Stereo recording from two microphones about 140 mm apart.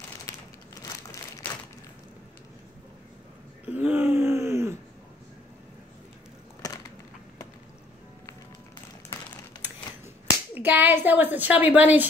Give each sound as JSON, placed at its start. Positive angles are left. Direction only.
{"t": 0.3, "sound": "crumpling", "side_deg": 20}
{"t": 3.6, "sound": "a sound", "side_deg": -10}
{"t": 10.2, "sound": "speech", "side_deg": -15}